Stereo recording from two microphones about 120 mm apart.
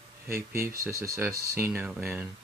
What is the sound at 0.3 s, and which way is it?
Speech, 20° right (ahead or behind).